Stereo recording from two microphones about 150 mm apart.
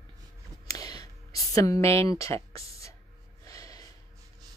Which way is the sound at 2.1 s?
20° left (ahead or behind).